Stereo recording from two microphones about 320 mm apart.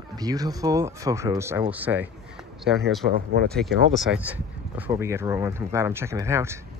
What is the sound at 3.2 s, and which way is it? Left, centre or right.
Speech, right.